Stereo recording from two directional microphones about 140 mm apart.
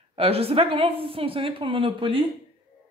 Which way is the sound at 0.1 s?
45° right (ahead or behind).